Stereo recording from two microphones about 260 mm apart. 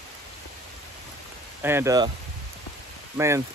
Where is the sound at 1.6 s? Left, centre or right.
Centre.